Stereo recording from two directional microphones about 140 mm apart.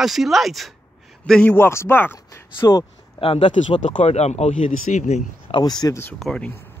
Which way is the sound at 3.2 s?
50° left (ahead or behind).